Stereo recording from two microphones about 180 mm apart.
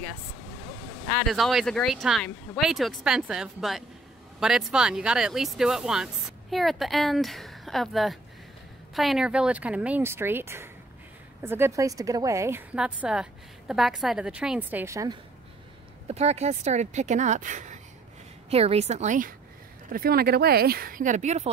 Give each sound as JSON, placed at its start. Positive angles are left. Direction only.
{"t": 1.1, "sound": "a woman's voice", "side_deg": 0}
{"t": 16.1, "sound": "speech", "side_deg": -35}
{"t": 19.9, "sound": "speech", "side_deg": -55}